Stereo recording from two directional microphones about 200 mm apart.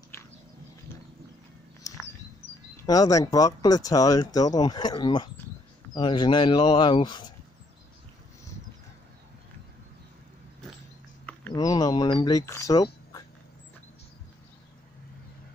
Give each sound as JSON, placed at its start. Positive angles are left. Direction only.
{"t": 1.8, "sound": "a sound", "side_deg": 15}
{"t": 2.9, "sound": "speech", "side_deg": 15}
{"t": 11.5, "sound": "speech", "side_deg": 20}